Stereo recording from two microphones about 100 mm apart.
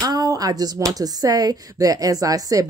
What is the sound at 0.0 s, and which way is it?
A woman's voice, 40° right (ahead or behind).